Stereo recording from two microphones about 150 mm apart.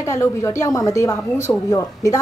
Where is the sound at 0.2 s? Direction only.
20° left (ahead or behind).